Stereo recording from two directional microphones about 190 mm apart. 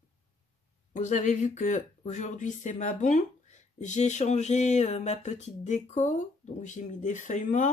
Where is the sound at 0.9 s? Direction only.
40° left (ahead or behind).